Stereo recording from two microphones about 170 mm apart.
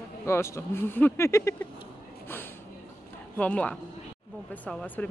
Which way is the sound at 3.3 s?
10° left (ahead or behind).